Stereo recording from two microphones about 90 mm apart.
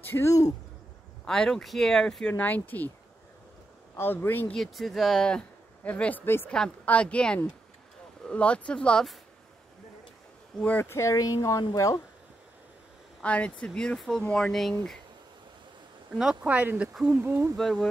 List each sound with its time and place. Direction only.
0.0 s speech: 25° left (ahead or behind)
1.2 s speech: 5° left (ahead or behind)
3.9 s speech: 25° left (ahead or behind)
4.6 s speech: centre (ahead or behind); by 6.5 s 20° left (ahead or behind)
6.5 s speech: 10° left (ahead or behind)
10.6 s speech: 20° left (ahead or behind); by 12.0 s 40° left (ahead or behind)
13.2 s speech: 15° left (ahead or behind)
16.2 s speech: 10° right (ahead or behind)
17.1 s speech: 25° right (ahead or behind)
17.6 s speech: 5° left (ahead or behind)